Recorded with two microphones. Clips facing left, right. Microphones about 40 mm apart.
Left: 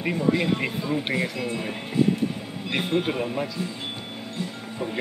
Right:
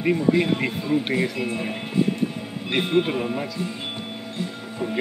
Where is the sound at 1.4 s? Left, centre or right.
Centre.